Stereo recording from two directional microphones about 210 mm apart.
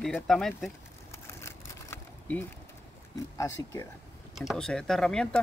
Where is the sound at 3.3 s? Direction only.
15° left (ahead or behind).